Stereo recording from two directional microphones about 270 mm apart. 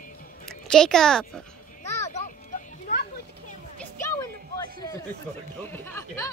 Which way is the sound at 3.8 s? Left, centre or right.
Centre.